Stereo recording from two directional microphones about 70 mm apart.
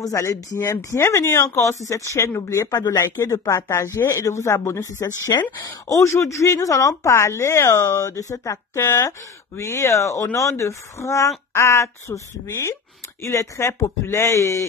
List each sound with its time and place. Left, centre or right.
0.0 s speech: left
0.8 s speech: left
5.6 s speech: left
6.0 s speech: left